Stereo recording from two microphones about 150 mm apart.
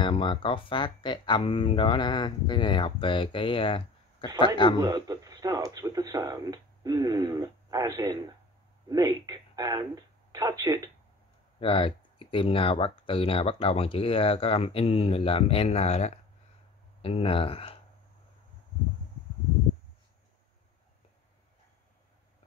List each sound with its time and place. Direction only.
0.0 s speech: 35° left (ahead or behind)
4.7 s speech: 25° right (ahead or behind)
11.6 s speech: 35° left (ahead or behind)